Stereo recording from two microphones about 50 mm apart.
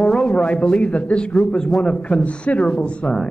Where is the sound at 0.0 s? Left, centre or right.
Centre.